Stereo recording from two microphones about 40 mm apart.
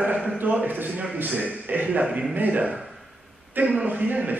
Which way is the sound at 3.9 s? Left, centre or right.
Right.